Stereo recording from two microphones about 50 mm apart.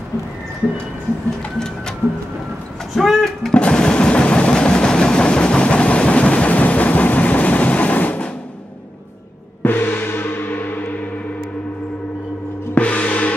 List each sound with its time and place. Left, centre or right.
3.0 s music: centre
3.5 s a sound: centre
9.6 s gong: left
12.7 s music: left